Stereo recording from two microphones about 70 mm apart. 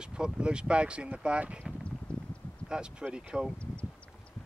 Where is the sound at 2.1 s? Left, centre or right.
Centre.